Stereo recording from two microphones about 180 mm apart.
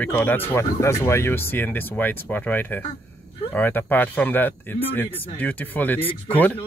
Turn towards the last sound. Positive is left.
turn(degrees=10)  # may be behind; listen again after turning